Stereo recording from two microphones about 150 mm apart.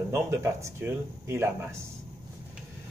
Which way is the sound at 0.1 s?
15° right (ahead or behind).